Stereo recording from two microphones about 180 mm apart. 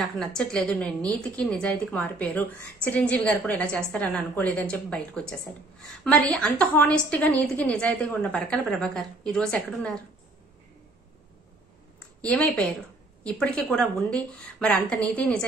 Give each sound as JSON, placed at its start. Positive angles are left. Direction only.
{"t": 0.0, "sound": "a woman's voice", "side_deg": 5}
{"t": 12.2, "sound": "a woman's voice", "side_deg": 10}